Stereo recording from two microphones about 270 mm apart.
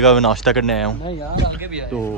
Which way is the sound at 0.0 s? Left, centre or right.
Centre.